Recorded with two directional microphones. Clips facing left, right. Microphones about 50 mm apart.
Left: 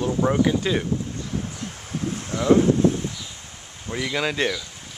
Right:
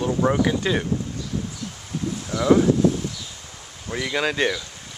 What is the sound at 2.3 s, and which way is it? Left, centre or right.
Speech, left.